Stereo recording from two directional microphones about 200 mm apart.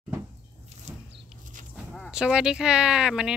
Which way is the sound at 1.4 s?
40° right (ahead or behind).